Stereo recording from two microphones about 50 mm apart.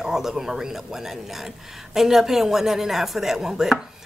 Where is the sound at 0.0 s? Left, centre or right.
Centre.